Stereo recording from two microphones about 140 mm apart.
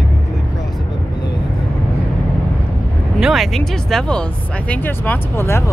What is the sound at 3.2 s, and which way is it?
Speech, centre (ahead or behind).